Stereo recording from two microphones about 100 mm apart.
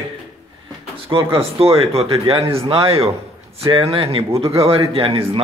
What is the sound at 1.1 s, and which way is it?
A man's voice, 65° right (ahead or behind).